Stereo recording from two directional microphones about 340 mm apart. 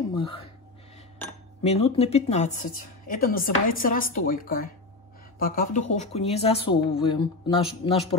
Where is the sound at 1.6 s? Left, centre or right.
Centre.